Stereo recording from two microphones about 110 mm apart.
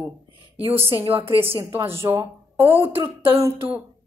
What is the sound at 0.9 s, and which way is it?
Speech, 55° right (ahead or behind).